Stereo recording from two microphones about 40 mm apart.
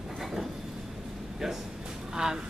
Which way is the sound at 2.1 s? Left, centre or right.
Centre.